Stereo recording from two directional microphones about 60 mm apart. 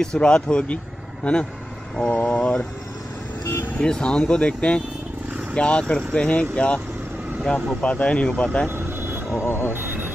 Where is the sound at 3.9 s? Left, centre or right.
Centre.